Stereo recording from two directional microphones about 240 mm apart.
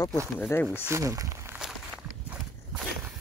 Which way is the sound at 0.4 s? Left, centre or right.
Centre.